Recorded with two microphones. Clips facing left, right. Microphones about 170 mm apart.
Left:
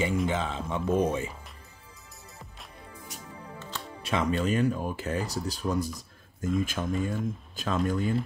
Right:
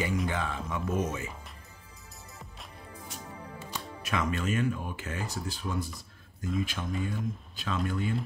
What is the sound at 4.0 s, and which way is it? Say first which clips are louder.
Speech: left 4 dB; 30° left (ahead or behind).